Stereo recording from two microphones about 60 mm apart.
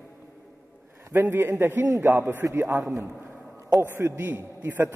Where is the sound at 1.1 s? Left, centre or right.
Right.